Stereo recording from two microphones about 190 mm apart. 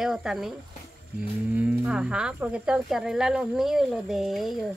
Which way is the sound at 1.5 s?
5° right (ahead or behind).